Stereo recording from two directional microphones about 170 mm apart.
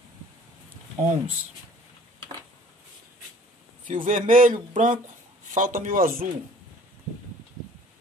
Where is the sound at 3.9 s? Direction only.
50° right (ahead or behind).